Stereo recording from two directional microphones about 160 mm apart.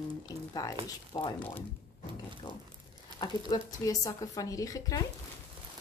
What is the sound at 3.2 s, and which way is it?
Speech, 25° left (ahead or behind).